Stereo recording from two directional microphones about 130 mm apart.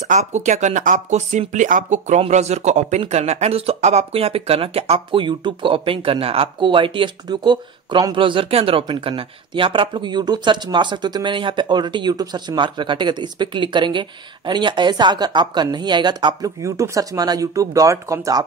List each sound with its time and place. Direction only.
0.1 s speech: 65° right (ahead or behind); by 16.5 s 35° right (ahead or behind)
16.6 s speech: 25° right (ahead or behind)